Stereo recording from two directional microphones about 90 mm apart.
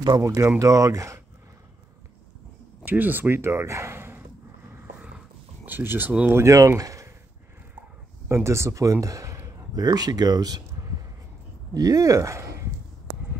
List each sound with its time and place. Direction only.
0.2 s speech: 35° right (ahead or behind)
2.8 s speech: 20° right (ahead or behind)
5.7 s speech: 20° right (ahead or behind)
6.4 s speech: 35° right (ahead or behind)
6.8 s a sound: 40° right (ahead or behind)
8.5 s a man's voice: 35° right (ahead or behind)
11.7 s speech: 40° right (ahead or behind)